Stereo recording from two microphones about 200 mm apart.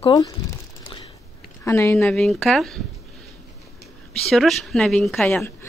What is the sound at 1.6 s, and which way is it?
Speech, 10° left (ahead or behind).